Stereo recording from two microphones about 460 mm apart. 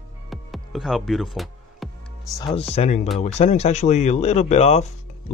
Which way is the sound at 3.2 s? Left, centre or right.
Centre.